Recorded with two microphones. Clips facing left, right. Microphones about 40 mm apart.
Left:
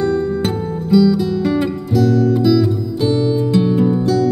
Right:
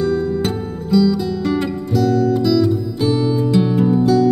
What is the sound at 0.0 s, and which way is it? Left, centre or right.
Music, centre.